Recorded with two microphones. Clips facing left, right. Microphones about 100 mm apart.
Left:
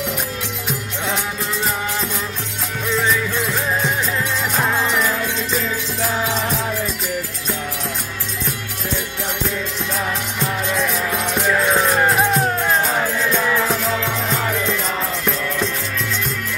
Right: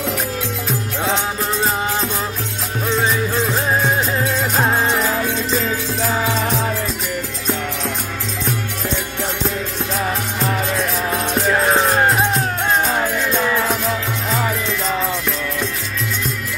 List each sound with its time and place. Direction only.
2.9 s music: 30° right (ahead or behind)
11.5 s music: 30° right (ahead or behind)
13.0 s music: 15° right (ahead or behind)